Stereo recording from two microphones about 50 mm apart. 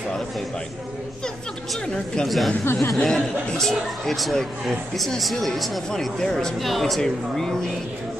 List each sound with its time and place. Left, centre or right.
2.2 s a man's voice: centre
2.6 s speech: left
3.0 s a man's voice: centre
5.9 s a man's voice: centre